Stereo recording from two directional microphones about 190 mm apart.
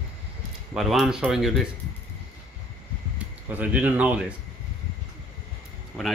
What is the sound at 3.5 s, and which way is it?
Speech, 10° right (ahead or behind).